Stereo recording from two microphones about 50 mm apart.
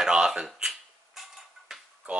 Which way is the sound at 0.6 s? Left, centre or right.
Centre.